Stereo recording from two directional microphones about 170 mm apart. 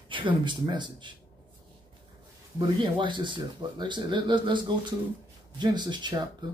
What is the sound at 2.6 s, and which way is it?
Speech, 30° right (ahead or behind).